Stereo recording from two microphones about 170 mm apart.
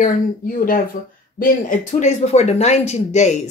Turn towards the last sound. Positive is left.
turn(degrees=40)  # may be behind; listen again after turning